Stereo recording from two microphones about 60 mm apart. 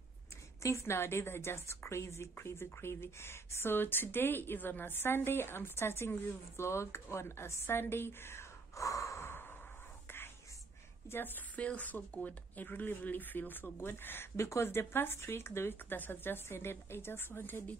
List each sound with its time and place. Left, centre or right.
0.6 s a woman's voice: left
8.7 s gasp: left
10.0 s whispering: left
11.1 s speech: left